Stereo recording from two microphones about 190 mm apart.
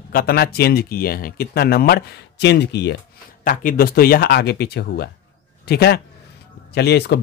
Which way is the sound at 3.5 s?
50° left (ahead or behind).